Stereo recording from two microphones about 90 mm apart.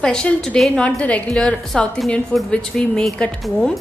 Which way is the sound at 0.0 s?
10° left (ahead or behind).